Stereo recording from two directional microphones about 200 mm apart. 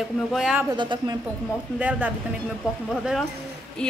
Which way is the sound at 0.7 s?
20° right (ahead or behind).